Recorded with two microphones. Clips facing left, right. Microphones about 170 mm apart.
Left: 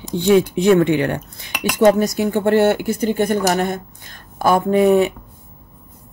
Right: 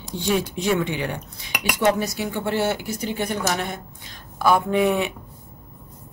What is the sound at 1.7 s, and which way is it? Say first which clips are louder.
Speech: left 8 dB; 45° left (ahead or behind).